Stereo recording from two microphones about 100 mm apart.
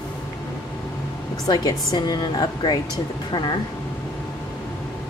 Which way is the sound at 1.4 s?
40° left (ahead or behind).